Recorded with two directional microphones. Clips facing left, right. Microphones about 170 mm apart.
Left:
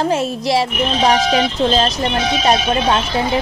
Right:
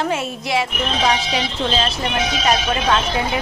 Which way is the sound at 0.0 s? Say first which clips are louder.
Left 5 dB; 35° left (ahead or behind).